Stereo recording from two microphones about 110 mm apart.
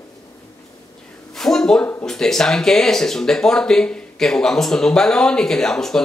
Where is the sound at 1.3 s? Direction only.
5° left (ahead or behind).